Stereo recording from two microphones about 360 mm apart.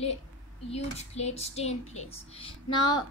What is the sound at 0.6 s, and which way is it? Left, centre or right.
Speech, centre.